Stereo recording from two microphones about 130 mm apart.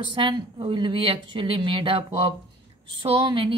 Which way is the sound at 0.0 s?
40° right (ahead or behind).